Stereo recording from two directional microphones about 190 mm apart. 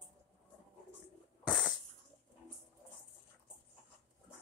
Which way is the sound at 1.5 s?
5° left (ahead or behind).